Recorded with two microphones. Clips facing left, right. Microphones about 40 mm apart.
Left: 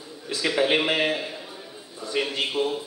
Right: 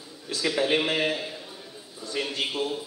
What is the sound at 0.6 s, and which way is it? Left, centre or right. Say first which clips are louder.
A man's voice: left 2 dB; left.